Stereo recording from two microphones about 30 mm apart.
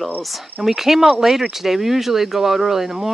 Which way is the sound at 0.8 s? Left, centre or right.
Centre.